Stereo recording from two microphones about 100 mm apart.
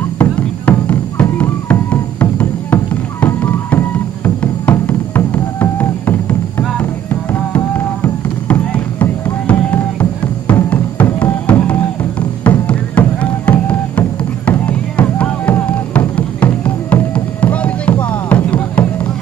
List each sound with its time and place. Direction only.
0.2 s music: 15° left (ahead or behind)
9.5 s music: 15° left (ahead or behind)